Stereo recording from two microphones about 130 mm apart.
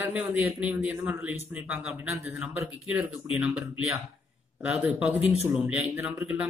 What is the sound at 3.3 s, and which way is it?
Speech, 10° right (ahead or behind).